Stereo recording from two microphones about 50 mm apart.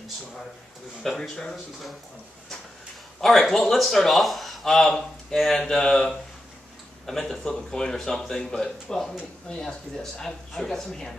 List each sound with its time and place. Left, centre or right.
1.0 s speech: centre
3.2 s speech: centre